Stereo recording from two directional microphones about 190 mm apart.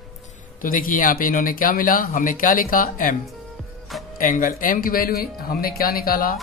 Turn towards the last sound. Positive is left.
turn(degrees=50)  # may be behind; listen again after turning